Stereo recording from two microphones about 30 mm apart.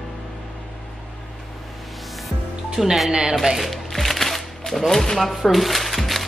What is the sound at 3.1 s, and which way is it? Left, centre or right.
Speech, right.